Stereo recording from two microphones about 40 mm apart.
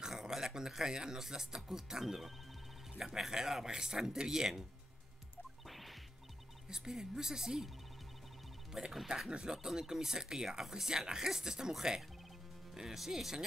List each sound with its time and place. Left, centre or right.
0.0 s a man's voice: centre
5.7 s music: centre
6.7 s a man's voice: centre
8.7 s a man's voice: centre
9.3 s a man's voice: centre
12.7 s a man's voice: centre